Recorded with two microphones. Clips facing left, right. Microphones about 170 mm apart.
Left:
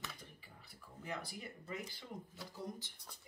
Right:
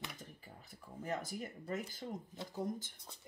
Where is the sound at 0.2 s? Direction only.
45° right (ahead or behind).